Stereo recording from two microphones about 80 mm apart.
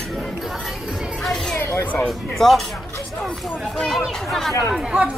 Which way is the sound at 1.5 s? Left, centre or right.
Left.